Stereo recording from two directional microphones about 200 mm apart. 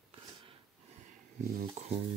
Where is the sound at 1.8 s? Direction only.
35° right (ahead or behind).